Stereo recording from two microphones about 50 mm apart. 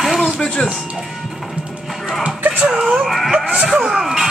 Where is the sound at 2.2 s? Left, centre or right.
Right.